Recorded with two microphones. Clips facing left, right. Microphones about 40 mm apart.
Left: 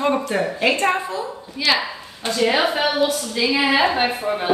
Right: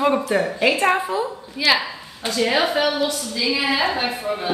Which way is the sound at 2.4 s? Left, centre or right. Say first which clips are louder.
Left 1 dB; centre.